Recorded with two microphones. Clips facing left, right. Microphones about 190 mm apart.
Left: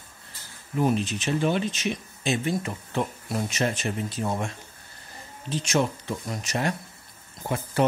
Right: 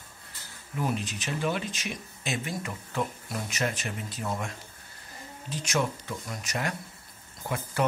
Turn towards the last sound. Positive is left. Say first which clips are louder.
# left 4 dB
turn(degrees=30)  # may be behind; listen again after turning